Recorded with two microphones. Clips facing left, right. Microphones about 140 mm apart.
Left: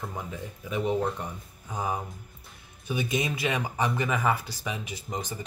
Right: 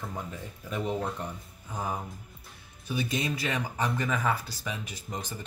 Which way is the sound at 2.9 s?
15° left (ahead or behind).